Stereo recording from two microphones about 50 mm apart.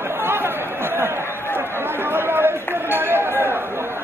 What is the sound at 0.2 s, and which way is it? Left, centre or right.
Chatter, right.